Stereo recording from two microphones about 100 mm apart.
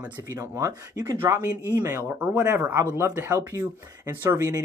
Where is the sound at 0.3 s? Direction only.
30° right (ahead or behind).